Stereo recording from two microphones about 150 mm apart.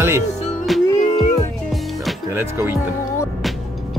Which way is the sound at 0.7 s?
Centre (ahead or behind).